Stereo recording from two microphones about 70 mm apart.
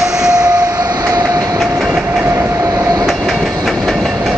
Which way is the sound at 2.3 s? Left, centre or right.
Right.